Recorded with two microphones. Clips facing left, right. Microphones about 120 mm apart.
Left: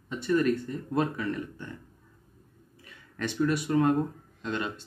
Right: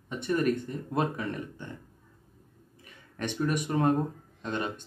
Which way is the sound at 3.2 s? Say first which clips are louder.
Left 2 dB; 20° right (ahead or behind).